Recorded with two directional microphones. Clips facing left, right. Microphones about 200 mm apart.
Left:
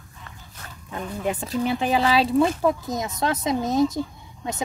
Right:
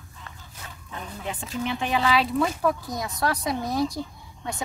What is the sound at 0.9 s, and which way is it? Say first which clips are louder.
Speech: left 8 dB; 40° left (ahead or behind).